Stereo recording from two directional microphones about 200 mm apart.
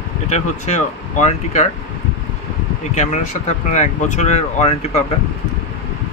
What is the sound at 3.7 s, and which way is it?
Speech, 35° left (ahead or behind).